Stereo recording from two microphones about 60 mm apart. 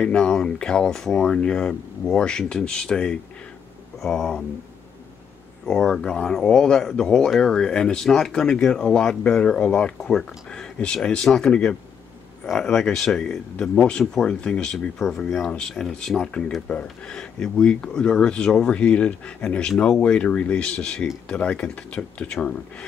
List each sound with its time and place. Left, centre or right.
0.0 s speech: centre
5.7 s speech: centre
12.5 s speech: centre